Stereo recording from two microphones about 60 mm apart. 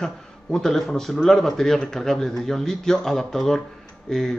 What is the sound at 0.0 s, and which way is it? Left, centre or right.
A man's voice, centre.